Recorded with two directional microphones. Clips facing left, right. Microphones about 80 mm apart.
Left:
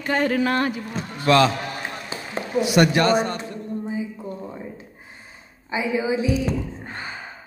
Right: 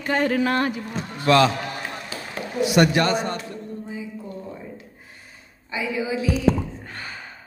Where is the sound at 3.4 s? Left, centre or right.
Left.